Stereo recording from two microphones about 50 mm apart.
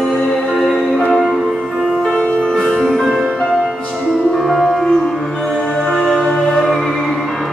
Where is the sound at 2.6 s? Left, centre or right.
Centre.